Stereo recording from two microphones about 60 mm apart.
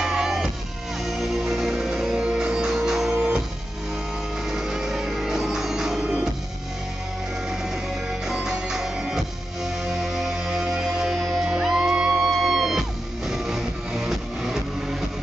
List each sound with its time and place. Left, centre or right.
0.0 s music: centre
4.5 s music: centre
8.3 s music: centre
12.3 s music: centre